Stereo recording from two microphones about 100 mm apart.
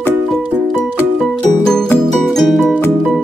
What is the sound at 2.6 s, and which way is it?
Music, 20° left (ahead or behind).